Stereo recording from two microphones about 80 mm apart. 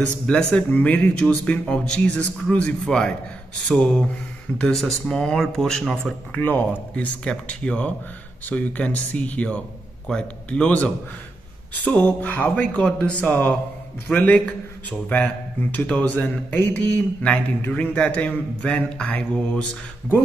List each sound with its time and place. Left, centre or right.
0.3 s a man's voice: centre
6.3 s a man's voice: left